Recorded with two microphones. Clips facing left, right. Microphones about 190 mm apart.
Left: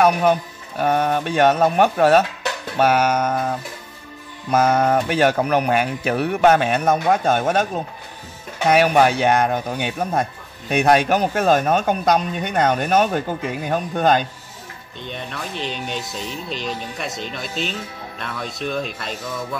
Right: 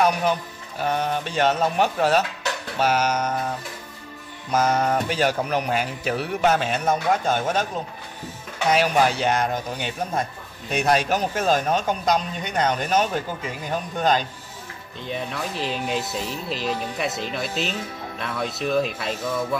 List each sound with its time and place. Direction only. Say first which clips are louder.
0.0 s speech: left 5 dB; 55° left (ahead or behind)
4.5 s speech: left 4 dB; 55° left (ahead or behind)
8.6 s speech: left 4 dB; 60° left (ahead or behind)
15.0 s speech: right 2 dB; 5° right (ahead or behind)